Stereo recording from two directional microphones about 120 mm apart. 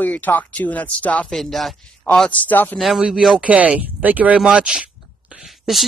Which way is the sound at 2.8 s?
Centre (ahead or behind).